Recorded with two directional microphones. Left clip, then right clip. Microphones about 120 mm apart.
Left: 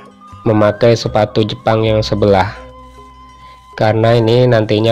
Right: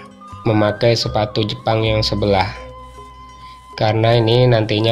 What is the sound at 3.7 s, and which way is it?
Speech, 50° left (ahead or behind).